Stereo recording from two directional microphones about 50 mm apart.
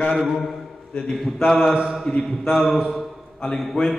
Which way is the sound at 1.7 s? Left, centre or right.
Centre.